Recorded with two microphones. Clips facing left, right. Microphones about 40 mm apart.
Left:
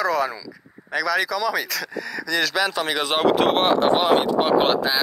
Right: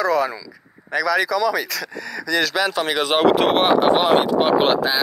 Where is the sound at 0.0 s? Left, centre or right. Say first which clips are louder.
Right 3 dB; centre.